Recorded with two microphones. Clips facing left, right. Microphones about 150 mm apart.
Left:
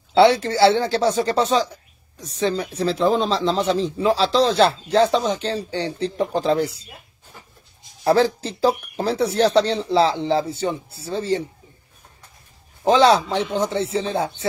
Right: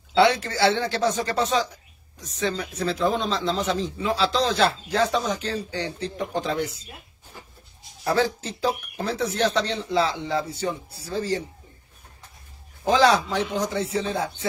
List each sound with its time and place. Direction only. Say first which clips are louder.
0.1 s speech: left 5 dB; 30° left (ahead or behind)
8.0 s speech: left 6 dB; 30° left (ahead or behind)
12.8 s a man's voice: left 4 dB; 30° left (ahead or behind)